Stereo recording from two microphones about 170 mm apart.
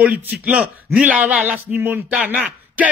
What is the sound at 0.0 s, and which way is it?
Speech, 10° right (ahead or behind).